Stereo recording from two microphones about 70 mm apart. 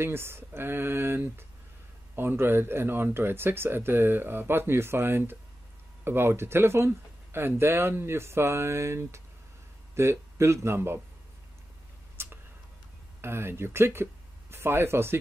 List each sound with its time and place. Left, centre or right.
0.0 s speech: right
12.2 s whispering: right
13.2 s speech: right